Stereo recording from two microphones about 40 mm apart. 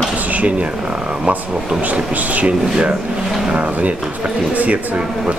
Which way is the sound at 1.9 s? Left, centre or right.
Right.